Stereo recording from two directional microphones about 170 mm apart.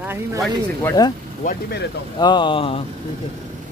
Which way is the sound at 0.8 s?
25° left (ahead or behind).